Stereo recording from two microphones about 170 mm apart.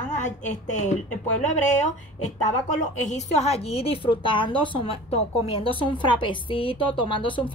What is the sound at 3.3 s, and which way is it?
A woman's voice, 40° left (ahead or behind).